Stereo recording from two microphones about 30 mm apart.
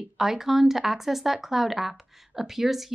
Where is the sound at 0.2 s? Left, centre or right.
Centre.